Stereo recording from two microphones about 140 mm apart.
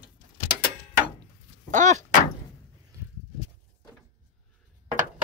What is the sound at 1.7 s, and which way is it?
Door, 60° right (ahead or behind).